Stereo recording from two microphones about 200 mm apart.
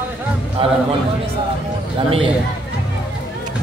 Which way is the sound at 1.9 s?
30° right (ahead or behind).